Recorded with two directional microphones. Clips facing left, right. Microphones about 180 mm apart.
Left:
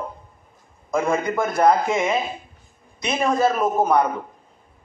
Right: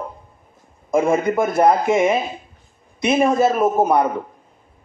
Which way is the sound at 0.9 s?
25° right (ahead or behind).